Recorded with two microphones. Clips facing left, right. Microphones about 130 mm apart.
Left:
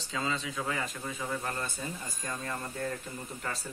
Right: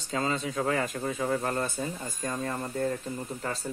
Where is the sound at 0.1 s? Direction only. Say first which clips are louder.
Right 5 dB; 40° right (ahead or behind).